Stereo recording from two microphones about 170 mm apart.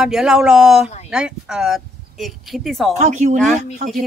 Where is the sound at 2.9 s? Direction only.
45° right (ahead or behind).